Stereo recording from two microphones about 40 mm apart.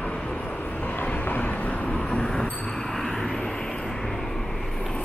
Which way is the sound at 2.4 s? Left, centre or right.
Left.